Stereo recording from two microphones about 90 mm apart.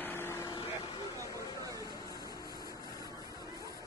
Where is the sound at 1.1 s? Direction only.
40° right (ahead or behind).